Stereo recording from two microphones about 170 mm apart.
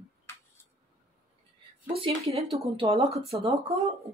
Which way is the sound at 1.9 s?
35° right (ahead or behind).